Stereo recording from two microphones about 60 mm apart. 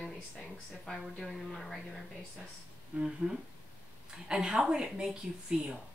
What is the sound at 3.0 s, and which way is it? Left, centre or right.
Speech, centre.